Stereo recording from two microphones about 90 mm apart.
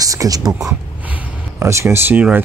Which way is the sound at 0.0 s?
40° right (ahead or behind).